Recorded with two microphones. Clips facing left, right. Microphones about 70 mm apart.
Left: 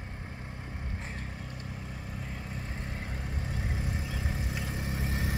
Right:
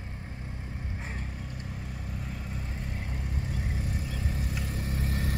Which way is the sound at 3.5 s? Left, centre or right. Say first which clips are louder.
Left 1 dB; left.